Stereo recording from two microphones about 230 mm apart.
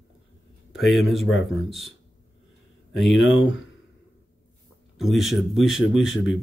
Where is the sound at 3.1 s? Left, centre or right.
Left.